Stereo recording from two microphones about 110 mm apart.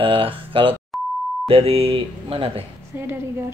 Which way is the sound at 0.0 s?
50° right (ahead or behind).